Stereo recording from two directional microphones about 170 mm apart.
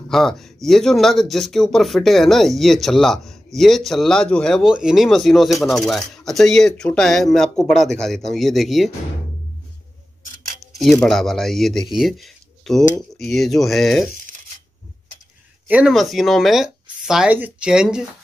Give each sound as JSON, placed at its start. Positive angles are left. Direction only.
{"t": 0.1, "sound": "speech", "side_deg": 0}
{"t": 10.8, "sound": "speech", "side_deg": 0}
{"t": 15.7, "sound": "speech", "side_deg": -5}